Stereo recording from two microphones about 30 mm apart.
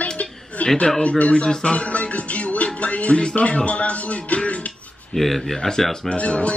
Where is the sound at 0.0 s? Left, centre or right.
Left.